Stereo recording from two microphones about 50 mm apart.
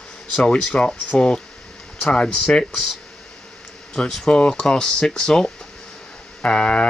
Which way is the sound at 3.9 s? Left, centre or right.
Centre.